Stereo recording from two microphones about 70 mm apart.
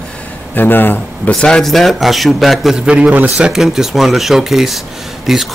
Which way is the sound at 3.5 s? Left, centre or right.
Centre.